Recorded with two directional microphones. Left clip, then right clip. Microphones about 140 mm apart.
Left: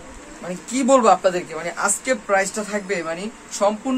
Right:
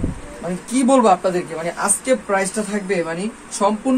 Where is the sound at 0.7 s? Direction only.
Centre (ahead or behind).